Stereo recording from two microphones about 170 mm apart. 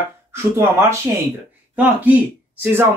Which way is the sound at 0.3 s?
15° right (ahead or behind).